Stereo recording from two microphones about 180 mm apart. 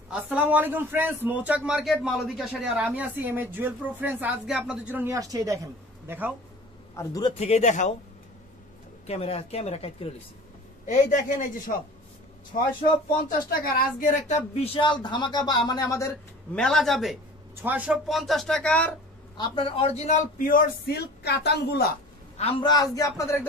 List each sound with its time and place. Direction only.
0.1 s a man's voice: 10° right (ahead or behind)
7.0 s speech: 25° left (ahead or behind)
7.3 s speech: 35° left (ahead or behind)
9.0 s speech: 35° left (ahead or behind)
10.9 s a man's voice: 45° left (ahead or behind)
12.5 s a man's voice: 50° left (ahead or behind)
14.5 s speech: 30° left (ahead or behind)
16.5 s speech: 5° left (ahead or behind)
19.3 s a man's voice: 25° left (ahead or behind); by 21.9 s 60° left (ahead or behind)
22.4 s speech: 30° left (ahead or behind)